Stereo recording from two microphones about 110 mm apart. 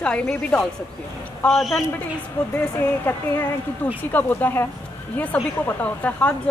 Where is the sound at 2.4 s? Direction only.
15° left (ahead or behind).